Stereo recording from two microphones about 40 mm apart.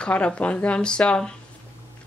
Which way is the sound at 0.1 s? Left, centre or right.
Left.